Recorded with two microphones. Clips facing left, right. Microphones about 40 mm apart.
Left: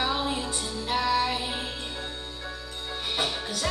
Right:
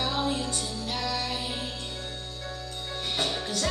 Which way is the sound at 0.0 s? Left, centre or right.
Centre.